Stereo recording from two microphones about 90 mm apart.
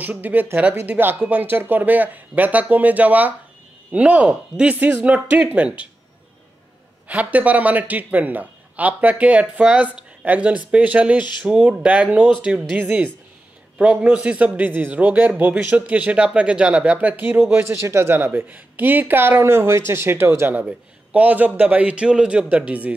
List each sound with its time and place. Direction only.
0.0 s a man's voice: 20° right (ahead or behind)
7.1 s a man's voice: 15° right (ahead or behind)